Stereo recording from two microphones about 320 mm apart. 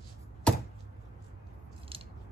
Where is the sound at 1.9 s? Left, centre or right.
Centre.